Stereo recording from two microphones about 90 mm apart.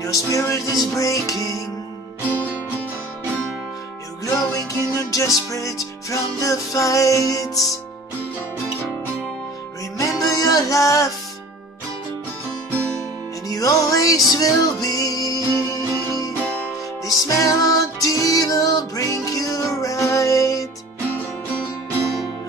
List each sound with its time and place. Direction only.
0.0 s music: 40° left (ahead or behind)
4.3 s music: 40° left (ahead or behind)
9.9 s music: 40° left (ahead or behind)
13.5 s music: 40° left (ahead or behind)
16.4 s music: 15° left (ahead or behind)
17.0 s music: 40° left (ahead or behind)